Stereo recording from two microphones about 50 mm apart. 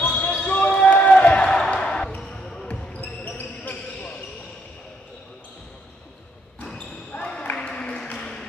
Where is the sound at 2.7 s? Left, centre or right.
Left.